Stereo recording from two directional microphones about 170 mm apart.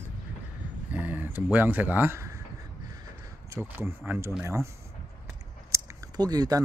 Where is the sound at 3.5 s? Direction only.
15° right (ahead or behind).